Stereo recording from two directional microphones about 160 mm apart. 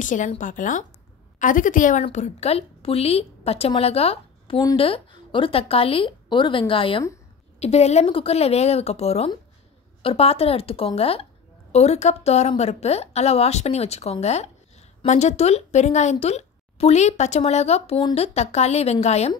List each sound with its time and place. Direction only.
0.0 s speech: 55° left (ahead or behind)
2.0 s a woman's voice: 45° left (ahead or behind)